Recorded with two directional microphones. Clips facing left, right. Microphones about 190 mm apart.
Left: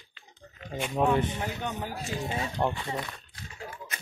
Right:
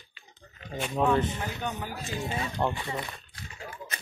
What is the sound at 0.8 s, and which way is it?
Speech, 10° left (ahead or behind).